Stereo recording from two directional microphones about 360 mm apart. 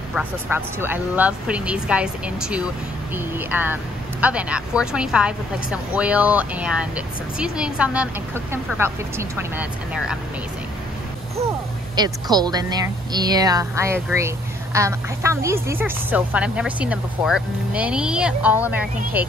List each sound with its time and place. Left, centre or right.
0.1 s speech: centre
11.3 s speech: centre